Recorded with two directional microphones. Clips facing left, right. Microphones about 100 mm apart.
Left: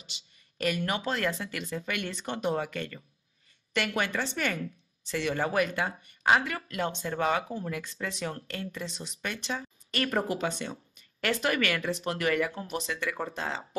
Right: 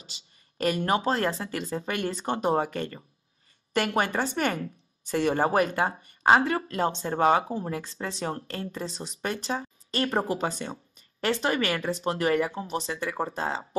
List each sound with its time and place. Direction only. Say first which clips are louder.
0.0 s speech: right 1 dB; 40° right (ahead or behind)